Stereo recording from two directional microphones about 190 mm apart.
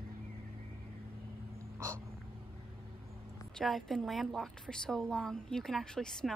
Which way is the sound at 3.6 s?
Centre (ahead or behind).